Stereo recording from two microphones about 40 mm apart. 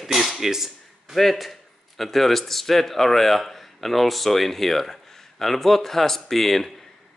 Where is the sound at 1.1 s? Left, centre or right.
Centre.